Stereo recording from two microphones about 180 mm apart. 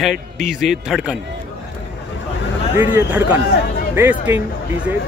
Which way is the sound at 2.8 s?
10° right (ahead or behind).